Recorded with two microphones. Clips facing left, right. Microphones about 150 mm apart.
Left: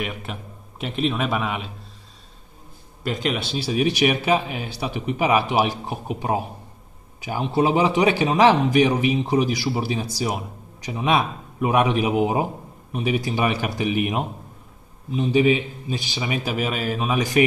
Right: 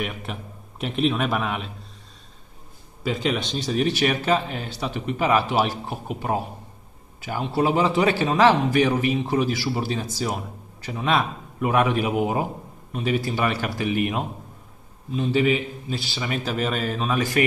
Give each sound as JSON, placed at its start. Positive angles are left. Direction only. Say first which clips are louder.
{"t": 0.0, "sound": "a man's voice", "louder": "even", "side_deg": 0}
{"t": 3.0, "sound": "a man's voice", "louder": "even", "side_deg": 0}